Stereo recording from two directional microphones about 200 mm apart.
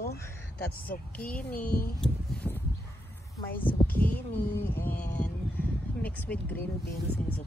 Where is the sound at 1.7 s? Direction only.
50° left (ahead or behind).